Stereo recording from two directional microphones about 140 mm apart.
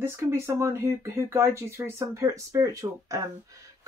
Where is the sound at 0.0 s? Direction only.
20° right (ahead or behind).